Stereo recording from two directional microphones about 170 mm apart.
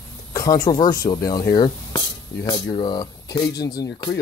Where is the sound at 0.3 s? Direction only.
20° left (ahead or behind).